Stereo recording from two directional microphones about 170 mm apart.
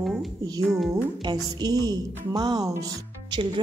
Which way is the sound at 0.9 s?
25° right (ahead or behind).